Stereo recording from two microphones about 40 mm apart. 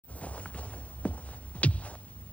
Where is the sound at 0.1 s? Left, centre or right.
Left.